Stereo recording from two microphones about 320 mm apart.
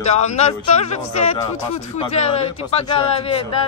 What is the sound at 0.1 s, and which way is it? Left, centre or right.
A man's voice, left.